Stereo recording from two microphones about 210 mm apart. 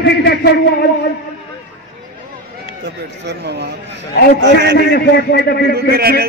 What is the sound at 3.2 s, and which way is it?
Speech, 50° right (ahead or behind).